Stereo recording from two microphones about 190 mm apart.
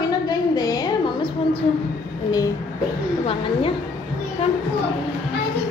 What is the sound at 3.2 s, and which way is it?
Speech, 30° left (ahead or behind).